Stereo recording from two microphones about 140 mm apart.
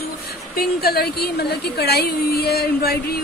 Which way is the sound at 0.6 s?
90° left.